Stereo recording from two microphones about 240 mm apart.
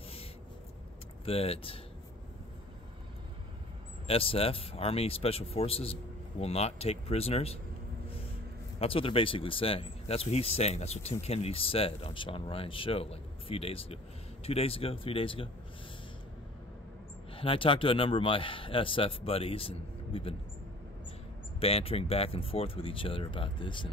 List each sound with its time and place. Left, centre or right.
1.2 s speech: left
4.1 s speech: left
8.7 s speech: left
17.3 s speech: left
21.5 s speech: left